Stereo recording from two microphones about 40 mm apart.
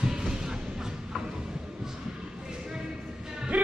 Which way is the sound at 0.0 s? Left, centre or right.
Centre.